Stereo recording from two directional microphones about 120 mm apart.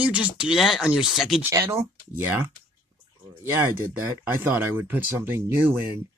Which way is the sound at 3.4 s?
20° right (ahead or behind).